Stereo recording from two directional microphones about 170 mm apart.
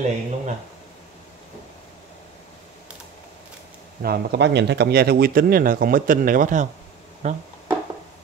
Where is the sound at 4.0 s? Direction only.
75° right (ahead or behind); by 7.4 s 40° right (ahead or behind).